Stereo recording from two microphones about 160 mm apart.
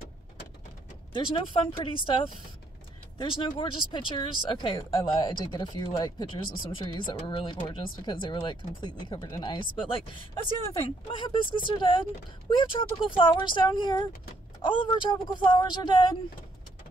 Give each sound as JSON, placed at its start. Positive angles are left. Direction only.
{"t": 1.1, "sound": "speech", "side_deg": 30}